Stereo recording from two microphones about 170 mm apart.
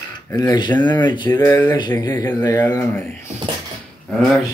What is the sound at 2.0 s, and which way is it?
Speech, 25° left (ahead or behind).